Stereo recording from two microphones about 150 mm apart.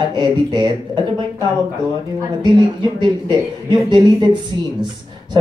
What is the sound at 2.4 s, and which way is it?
Speech, 30° right (ahead or behind).